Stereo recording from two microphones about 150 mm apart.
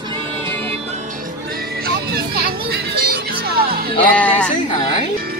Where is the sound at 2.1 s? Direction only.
90° right.